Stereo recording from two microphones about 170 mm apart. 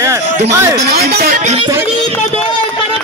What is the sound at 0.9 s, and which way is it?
Speech, 65° right (ahead or behind).